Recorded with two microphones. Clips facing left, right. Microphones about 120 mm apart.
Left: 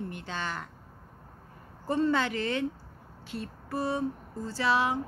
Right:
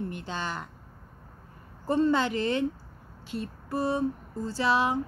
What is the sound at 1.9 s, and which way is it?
Speech, 25° right (ahead or behind).